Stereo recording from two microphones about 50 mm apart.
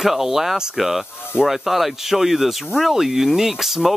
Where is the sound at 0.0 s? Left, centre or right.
Centre.